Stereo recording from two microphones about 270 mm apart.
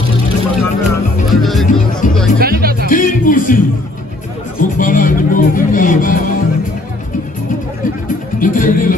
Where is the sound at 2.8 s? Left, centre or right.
Left.